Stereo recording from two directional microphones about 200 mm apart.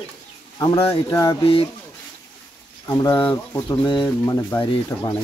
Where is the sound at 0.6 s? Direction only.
25° left (ahead or behind).